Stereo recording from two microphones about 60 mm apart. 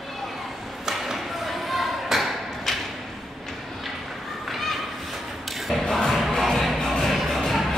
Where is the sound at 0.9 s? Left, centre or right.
Centre.